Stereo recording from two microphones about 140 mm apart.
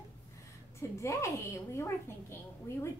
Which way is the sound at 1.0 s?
20° left (ahead or behind).